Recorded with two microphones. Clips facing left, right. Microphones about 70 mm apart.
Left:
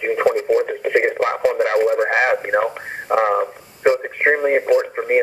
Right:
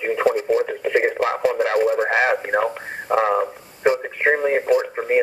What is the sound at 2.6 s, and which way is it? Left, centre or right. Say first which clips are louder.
Radio: left 1 dB; left.